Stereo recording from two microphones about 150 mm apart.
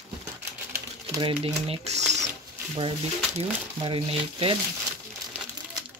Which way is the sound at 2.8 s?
35° right (ahead or behind).